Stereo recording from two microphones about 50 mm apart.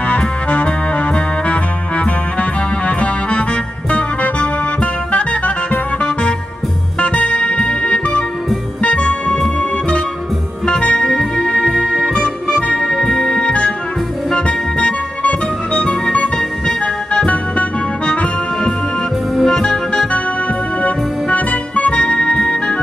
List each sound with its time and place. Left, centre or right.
0.0 s music: left
11.1 s music: centre
19.3 s music: centre
19.9 s organ: left
20.8 s music: left